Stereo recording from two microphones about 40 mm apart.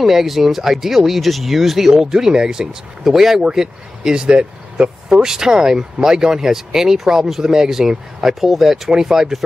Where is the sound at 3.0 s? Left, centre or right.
Centre.